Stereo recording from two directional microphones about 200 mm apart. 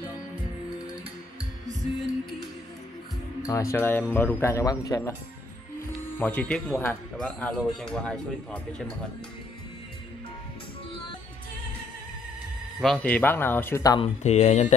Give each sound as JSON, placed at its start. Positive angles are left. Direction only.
{"t": 3.4, "sound": "speech", "side_deg": 15}
{"t": 6.1, "sound": "speech", "side_deg": 10}
{"t": 12.8, "sound": "speech", "side_deg": 5}
{"t": 14.0, "sound": "speech", "side_deg": 35}